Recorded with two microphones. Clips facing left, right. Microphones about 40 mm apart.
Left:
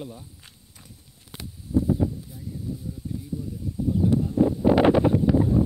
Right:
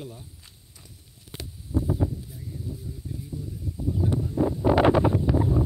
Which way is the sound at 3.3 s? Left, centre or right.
Left.